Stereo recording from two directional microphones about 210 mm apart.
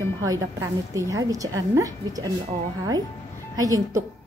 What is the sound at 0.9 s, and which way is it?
Speech, 15° right (ahead or behind).